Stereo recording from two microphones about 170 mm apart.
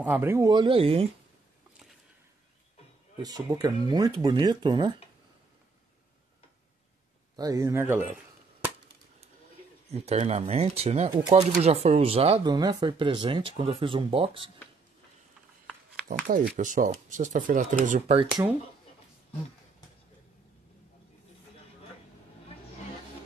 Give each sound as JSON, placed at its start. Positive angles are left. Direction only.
{"t": 0.0, "sound": "speech", "side_deg": -10}
{"t": 3.2, "sound": "speech", "side_deg": -20}
{"t": 7.3, "sound": "speech", "side_deg": -20}
{"t": 9.8, "sound": "speech", "side_deg": -40}
{"t": 12.4, "sound": "speech", "side_deg": -25}
{"t": 16.5, "sound": "speech", "side_deg": -50}